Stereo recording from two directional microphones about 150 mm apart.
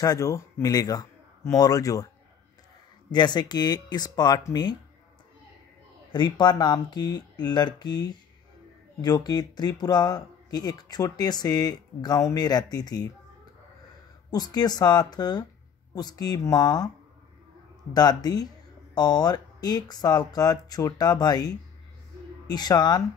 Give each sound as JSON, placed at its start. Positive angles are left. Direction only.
{"t": 0.0, "sound": "a man's voice", "side_deg": 20}
{"t": 3.1, "sound": "speech", "side_deg": 30}
{"t": 6.1, "sound": "speech", "side_deg": 30}
{"t": 14.3, "sound": "speech", "side_deg": 25}
{"t": 17.9, "sound": "speech", "side_deg": 25}